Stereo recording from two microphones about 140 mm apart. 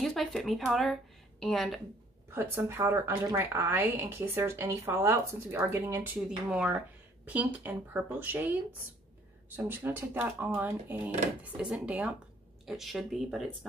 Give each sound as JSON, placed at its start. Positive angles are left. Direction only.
{"t": 0.0, "sound": "speech", "side_deg": 0}
{"t": 2.3, "sound": "a woman's voice", "side_deg": -15}
{"t": 6.2, "sound": "a woman's voice", "side_deg": -5}
{"t": 9.6, "sound": "a woman's voice", "side_deg": -15}